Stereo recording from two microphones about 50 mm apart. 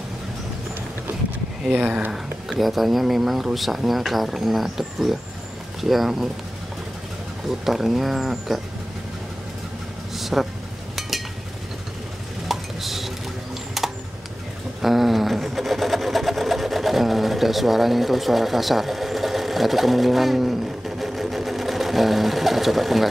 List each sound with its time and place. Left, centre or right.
1.8 s speech: right
2.6 s speech: centre
7.4 s speech: centre
10.1 s vehicle: centre
11.0 s a sound: centre
12.4 s a sound: centre
14.8 s sewing machine: centre